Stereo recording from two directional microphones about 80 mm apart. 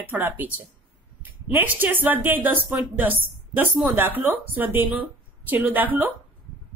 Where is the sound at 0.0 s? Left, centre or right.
Right.